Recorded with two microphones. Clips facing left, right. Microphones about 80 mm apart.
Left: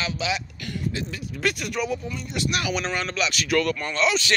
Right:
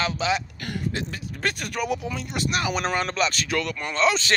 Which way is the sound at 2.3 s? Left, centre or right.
Right.